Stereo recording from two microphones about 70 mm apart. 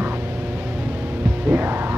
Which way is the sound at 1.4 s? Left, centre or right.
Right.